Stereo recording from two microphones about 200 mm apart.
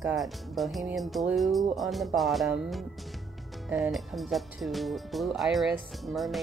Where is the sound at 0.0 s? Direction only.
Centre (ahead or behind).